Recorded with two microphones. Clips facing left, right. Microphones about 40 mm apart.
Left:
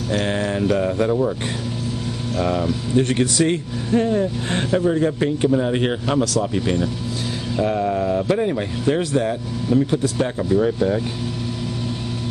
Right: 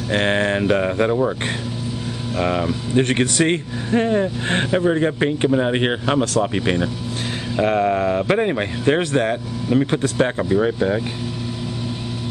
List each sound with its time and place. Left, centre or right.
0.1 s speech: right
2.4 s speech: right
3.0 s speech: right